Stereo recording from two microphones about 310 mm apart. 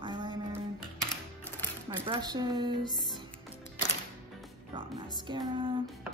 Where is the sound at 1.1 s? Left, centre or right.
Centre.